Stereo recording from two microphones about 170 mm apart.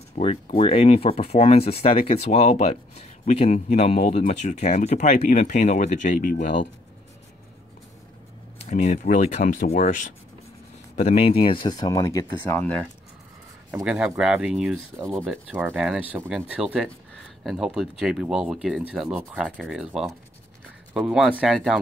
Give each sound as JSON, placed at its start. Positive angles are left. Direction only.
{"t": 0.2, "sound": "speech", "side_deg": 40}
{"t": 8.5, "sound": "speech", "side_deg": 40}
{"t": 13.8, "sound": "speech", "side_deg": -5}
{"t": 15.0, "sound": "speech", "side_deg": -15}